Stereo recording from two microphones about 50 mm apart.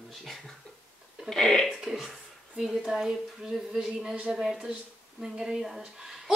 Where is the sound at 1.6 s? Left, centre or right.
Centre.